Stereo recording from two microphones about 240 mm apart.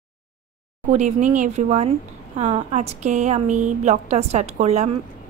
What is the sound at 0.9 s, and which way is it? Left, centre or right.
Speech, right.